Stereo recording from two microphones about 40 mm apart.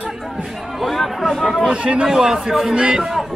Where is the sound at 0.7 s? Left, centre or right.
Centre.